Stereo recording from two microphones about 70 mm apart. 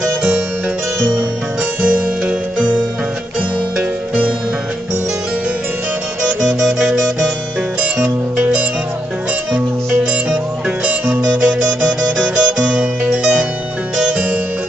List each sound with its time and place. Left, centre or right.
1.8 s music: centre
6.2 s music: centre
10.9 s music: right